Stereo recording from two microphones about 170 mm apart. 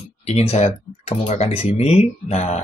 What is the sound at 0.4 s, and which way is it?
Speech, 40° left (ahead or behind).